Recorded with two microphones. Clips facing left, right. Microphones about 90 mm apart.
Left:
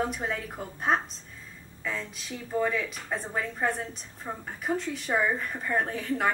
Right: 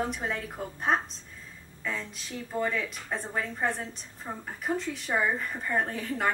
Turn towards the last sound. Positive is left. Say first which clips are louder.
# left 2 dB
turn(degrees=0)  # may be behind; listen again after turning